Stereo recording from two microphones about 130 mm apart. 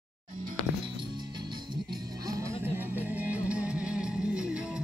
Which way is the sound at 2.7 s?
15° right (ahead or behind).